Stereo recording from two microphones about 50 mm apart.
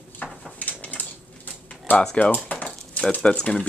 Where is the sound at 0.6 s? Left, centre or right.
Left.